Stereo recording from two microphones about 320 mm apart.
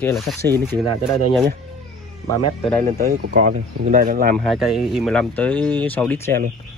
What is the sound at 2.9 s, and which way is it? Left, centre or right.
Speech, right.